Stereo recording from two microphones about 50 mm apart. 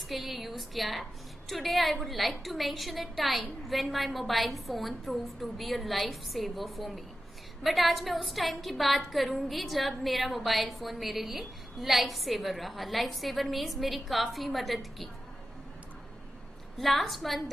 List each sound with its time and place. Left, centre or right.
0.1 s a woman's voice: centre
16.7 s a woman's voice: centre